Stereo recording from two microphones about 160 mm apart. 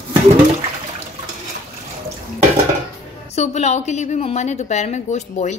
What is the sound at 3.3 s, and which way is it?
A woman's voice, 45° left (ahead or behind).